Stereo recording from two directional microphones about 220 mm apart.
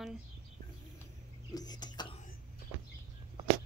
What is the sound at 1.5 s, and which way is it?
Speech, 20° left (ahead or behind).